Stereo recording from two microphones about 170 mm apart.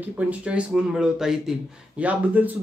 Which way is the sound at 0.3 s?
5° right (ahead or behind).